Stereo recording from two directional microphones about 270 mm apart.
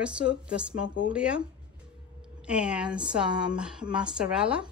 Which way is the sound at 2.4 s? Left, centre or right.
Centre.